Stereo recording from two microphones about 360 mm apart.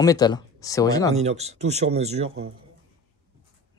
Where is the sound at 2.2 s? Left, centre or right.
Right.